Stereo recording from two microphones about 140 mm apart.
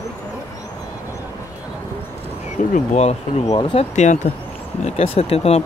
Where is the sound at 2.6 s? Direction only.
50° left (ahead or behind).